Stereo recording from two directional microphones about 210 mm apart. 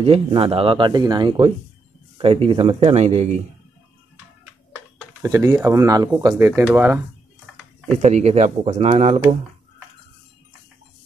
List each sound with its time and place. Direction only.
0.0 s speech: 25° right (ahead or behind)
5.2 s speech: 15° right (ahead or behind)
8.0 s speech: 30° right (ahead or behind)